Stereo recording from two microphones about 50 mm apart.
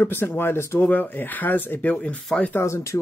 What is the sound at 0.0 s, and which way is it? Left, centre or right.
Speech, left.